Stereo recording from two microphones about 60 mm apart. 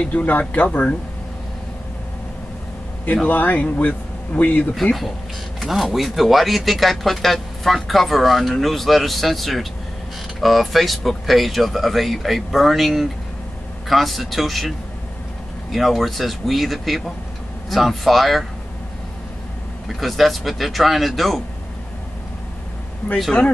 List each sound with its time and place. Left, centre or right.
0.0 s speech: left
3.3 s speech: left
5.6 s speech: centre
15.7 s speech: centre
19.9 s speech: centre